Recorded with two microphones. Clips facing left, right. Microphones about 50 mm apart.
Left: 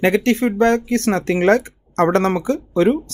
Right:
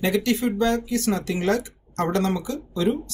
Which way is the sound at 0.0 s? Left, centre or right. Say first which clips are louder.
Left 6 dB; left.